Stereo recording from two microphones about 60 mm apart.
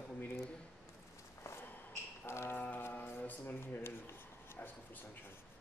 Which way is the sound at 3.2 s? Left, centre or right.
Left.